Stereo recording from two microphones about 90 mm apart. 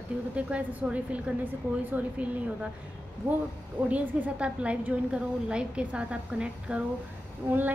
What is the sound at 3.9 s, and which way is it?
A woman's voice, 15° right (ahead or behind).